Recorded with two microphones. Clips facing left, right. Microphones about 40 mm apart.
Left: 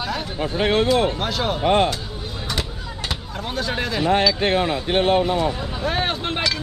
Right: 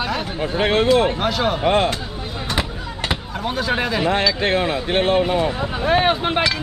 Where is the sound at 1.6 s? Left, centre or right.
Right.